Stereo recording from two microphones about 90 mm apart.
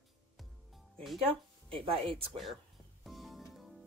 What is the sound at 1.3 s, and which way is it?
Speech, 85° right.